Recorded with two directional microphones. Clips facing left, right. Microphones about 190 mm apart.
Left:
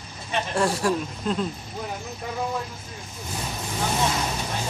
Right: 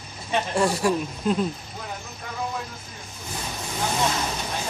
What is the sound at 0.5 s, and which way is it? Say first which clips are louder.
Speech: even; centre (ahead or behind).